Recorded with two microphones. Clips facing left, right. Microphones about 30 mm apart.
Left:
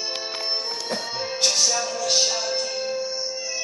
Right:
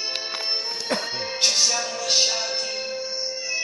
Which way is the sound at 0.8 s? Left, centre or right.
Centre.